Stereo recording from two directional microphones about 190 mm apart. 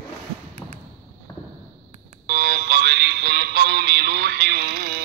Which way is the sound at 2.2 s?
55° right (ahead or behind).